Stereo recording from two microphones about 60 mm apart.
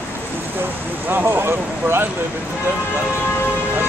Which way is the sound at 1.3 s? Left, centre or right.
Right.